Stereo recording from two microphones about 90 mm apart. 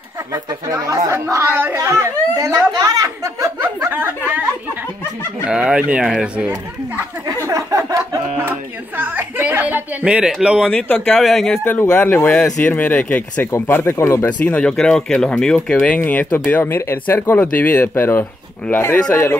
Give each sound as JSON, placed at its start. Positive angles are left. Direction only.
{"t": 0.3, "sound": "chatter", "side_deg": -35}
{"t": 3.6, "sound": "a sound", "side_deg": -20}
{"t": 5.4, "sound": "speech", "side_deg": -10}
{"t": 7.4, "sound": "a sound", "side_deg": -35}
{"t": 8.4, "sound": "music", "side_deg": -20}
{"t": 10.0, "sound": "speech", "side_deg": -10}
{"t": 11.1, "sound": "speech", "side_deg": 0}
{"t": 11.6, "sound": "speech", "side_deg": 25}
{"t": 14.5, "sound": "speech", "side_deg": 10}